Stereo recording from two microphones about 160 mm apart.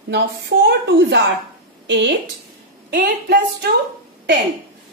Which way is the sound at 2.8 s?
90° right.